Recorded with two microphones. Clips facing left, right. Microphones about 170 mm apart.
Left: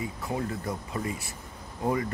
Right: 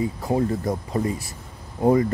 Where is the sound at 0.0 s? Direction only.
35° right (ahead or behind).